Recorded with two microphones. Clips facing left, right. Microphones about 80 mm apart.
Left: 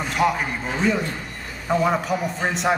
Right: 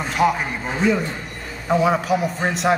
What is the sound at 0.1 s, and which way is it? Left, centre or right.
A man's voice, centre.